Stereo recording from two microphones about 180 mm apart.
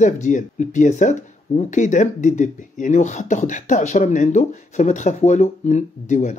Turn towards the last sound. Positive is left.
turn(degrees=40)  # may be behind; listen again after turning